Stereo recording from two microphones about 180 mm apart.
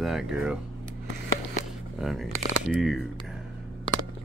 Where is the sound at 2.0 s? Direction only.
Centre (ahead or behind).